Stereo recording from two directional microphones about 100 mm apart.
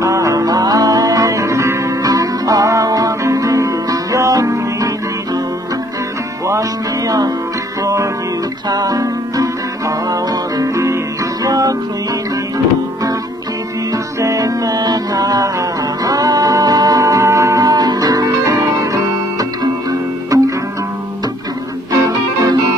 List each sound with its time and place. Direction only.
0.0 s music: 30° right (ahead or behind)
7.1 s music: 35° right (ahead or behind)
14.2 s music: 35° right (ahead or behind)
21.9 s music: 35° right (ahead or behind)